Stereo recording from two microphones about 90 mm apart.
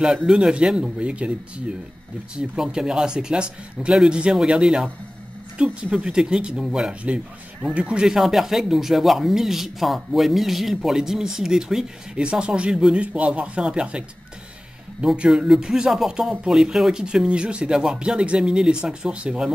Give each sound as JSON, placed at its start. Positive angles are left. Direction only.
{"t": 0.0, "sound": "speech", "side_deg": -10}